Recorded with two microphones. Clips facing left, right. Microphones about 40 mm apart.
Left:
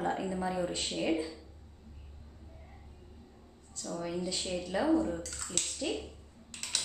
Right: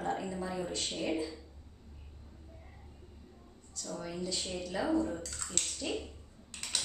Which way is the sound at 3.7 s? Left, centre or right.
Centre.